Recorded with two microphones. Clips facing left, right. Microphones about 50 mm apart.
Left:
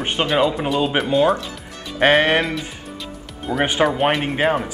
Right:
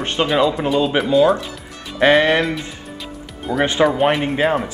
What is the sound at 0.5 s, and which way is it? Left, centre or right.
Speech, centre.